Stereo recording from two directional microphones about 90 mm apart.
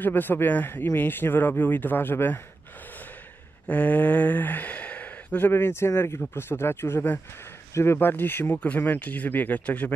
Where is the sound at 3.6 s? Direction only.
15° left (ahead or behind).